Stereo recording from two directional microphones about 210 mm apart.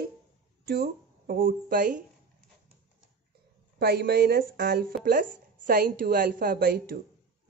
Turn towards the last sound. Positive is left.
turn(degrees=-50)  # may be behind; listen again after turning